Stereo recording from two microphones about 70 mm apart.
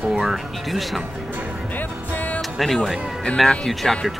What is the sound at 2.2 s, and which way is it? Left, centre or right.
Music, left.